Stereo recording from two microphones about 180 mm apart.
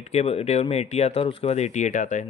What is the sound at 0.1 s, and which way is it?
Speech, 35° left (ahead or behind).